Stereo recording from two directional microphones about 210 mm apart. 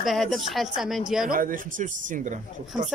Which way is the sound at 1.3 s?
40° right (ahead or behind).